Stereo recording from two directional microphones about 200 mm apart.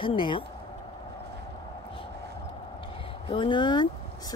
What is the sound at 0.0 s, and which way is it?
Speech, 25° left (ahead or behind).